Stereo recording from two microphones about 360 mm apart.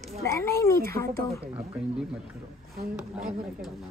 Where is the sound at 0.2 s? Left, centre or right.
Centre.